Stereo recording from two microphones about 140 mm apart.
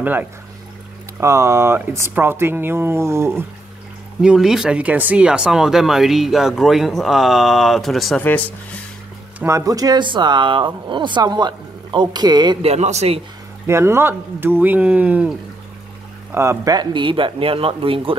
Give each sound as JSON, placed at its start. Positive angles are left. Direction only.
{"t": 0.0, "sound": "speech", "side_deg": -15}
{"t": 4.2, "sound": "speech", "side_deg": -5}
{"t": 8.2, "sound": "speech", "side_deg": 15}
{"t": 9.4, "sound": "speech", "side_deg": -20}
{"t": 12.6, "sound": "speech", "side_deg": -50}
{"t": 13.7, "sound": "speech", "side_deg": -20}